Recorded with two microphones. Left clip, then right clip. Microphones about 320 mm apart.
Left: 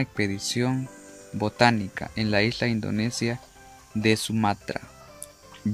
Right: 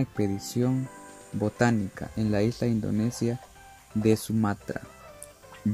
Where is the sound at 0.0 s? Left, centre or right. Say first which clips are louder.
Left 2 dB; left.